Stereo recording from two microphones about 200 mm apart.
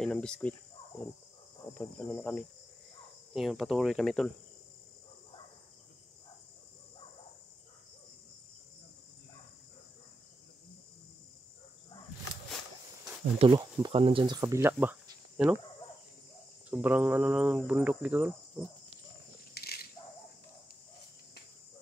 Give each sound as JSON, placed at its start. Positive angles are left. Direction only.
{"t": 0.0, "sound": "speech", "side_deg": 5}
{"t": 1.7, "sound": "cricket", "side_deg": 10}
{"t": 13.6, "sound": "speech", "side_deg": -20}
{"t": 16.7, "sound": "cricket", "side_deg": -10}
{"t": 19.5, "sound": "a sound", "side_deg": 50}